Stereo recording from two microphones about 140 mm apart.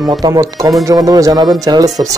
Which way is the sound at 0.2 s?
25° right (ahead or behind).